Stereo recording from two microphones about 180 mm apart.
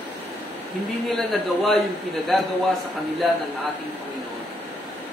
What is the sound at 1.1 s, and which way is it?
Speech, centre (ahead or behind).